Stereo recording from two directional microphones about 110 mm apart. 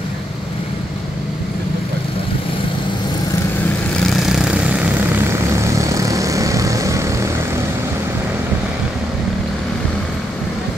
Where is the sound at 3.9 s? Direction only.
5° left (ahead or behind); by 7.6 s 25° right (ahead or behind).